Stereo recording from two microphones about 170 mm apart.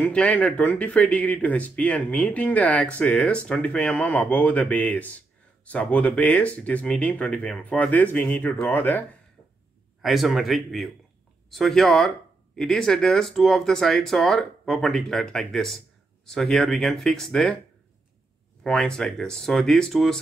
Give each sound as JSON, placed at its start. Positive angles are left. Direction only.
{"t": 0.0, "sound": "speech", "side_deg": 5}
{"t": 10.0, "sound": "speech", "side_deg": 0}
{"t": 18.6, "sound": "speech", "side_deg": 5}